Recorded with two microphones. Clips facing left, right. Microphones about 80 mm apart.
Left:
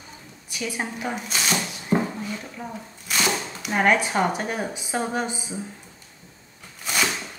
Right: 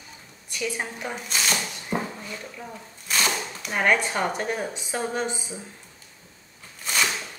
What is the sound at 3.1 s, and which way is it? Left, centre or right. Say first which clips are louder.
Speech: left 1 dB; centre.